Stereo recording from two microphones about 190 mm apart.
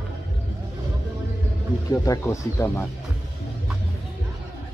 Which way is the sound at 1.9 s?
15° left (ahead or behind).